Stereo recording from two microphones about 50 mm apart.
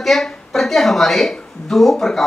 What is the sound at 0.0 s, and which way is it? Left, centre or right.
A woman's voice, centre.